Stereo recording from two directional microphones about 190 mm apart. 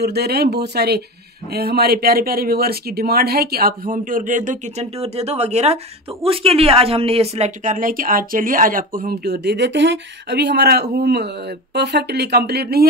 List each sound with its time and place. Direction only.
0.0 s speech: 60° right (ahead or behind)